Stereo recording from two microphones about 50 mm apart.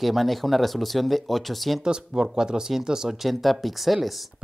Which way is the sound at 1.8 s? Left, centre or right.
Centre.